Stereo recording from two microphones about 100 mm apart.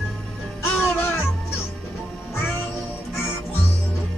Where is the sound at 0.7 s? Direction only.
25° left (ahead or behind).